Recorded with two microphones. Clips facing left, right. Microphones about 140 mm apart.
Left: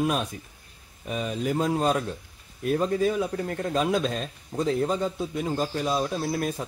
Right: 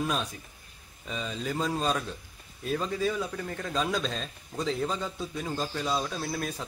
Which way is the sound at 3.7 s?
20° left (ahead or behind).